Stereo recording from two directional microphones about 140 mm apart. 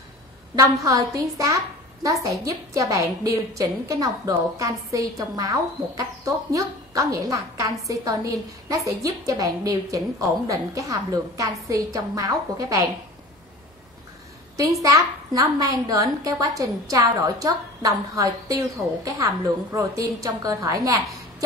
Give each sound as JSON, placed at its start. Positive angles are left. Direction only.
{"t": 0.6, "sound": "a woman's voice", "side_deg": -25}
{"t": 14.6, "sound": "a woman's voice", "side_deg": -25}